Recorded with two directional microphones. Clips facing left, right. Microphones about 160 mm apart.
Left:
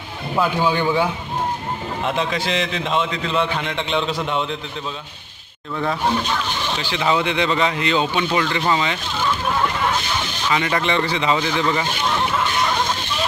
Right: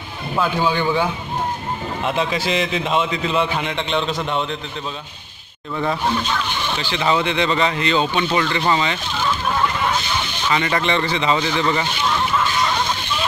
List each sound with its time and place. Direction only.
0.4 s speech: 10° left (ahead or behind)
2.0 s a man's voice: 5° right (ahead or behind)
6.8 s speech: 5° left (ahead or behind)
10.5 s speech: 5° left (ahead or behind)